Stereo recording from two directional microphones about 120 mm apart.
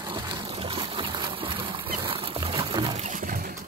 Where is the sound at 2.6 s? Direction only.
40° right (ahead or behind).